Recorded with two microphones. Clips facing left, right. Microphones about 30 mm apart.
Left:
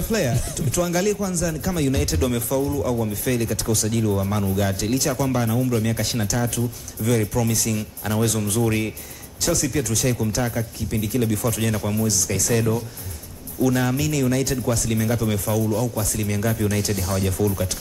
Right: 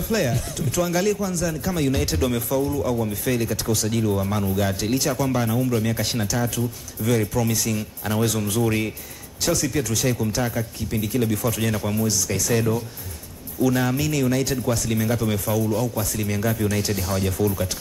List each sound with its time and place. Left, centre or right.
0.1 s speech: centre